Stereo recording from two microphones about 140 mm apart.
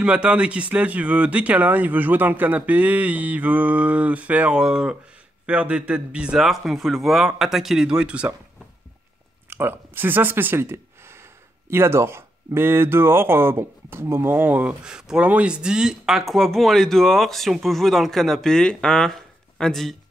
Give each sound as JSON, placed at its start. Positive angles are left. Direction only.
{"t": 0.0, "sound": "speech", "side_deg": -10}
{"t": 9.5, "sound": "speech", "side_deg": -15}